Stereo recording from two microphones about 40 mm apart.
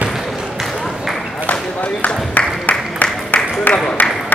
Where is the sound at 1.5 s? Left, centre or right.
Left.